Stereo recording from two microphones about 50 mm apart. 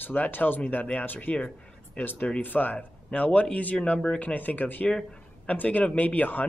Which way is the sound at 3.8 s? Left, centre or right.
Centre.